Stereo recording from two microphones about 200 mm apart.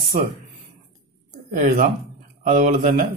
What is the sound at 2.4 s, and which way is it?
Speech, 40° right (ahead or behind).